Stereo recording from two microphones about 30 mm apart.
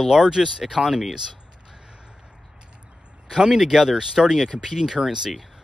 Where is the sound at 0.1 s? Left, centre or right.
Centre.